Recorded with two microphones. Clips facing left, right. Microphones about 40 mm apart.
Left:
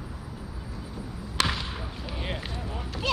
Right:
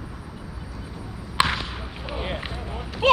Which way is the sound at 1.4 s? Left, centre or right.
Right.